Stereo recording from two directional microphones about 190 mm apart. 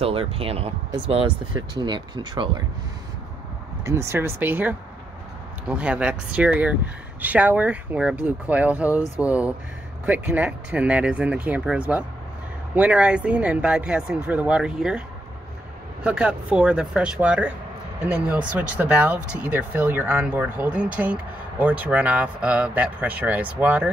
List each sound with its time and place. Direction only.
0.0 s speech: 30° right (ahead or behind)
3.8 s speech: 15° right (ahead or behind)